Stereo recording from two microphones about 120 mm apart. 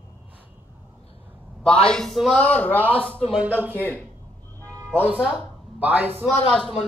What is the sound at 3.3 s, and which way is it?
Speech, 10° right (ahead or behind).